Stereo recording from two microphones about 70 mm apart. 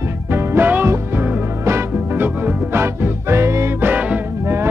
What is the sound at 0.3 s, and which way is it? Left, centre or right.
Music, right.